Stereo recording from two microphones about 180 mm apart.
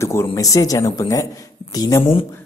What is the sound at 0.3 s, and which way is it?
A woman's voice, 20° left (ahead or behind).